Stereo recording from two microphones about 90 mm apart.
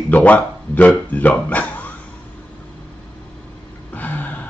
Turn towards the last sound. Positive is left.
turn(degrees=20)  # may be behind; listen again after turning